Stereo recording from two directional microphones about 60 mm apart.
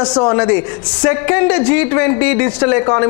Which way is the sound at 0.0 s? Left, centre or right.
Centre.